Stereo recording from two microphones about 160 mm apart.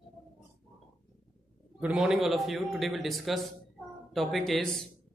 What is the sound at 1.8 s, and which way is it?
Speech, 5° right (ahead or behind).